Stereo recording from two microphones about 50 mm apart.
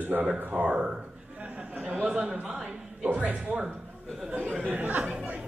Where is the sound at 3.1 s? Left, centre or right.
Right.